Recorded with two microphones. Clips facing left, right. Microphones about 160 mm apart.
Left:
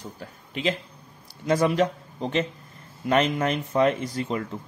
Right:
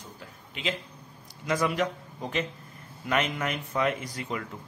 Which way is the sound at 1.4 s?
30° left (ahead or behind).